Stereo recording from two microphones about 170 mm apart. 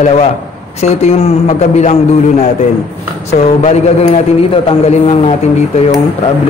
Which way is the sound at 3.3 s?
40° left (ahead or behind).